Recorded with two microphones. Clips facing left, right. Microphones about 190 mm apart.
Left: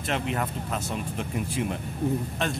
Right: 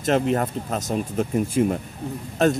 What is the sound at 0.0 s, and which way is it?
Speech, 40° right (ahead or behind).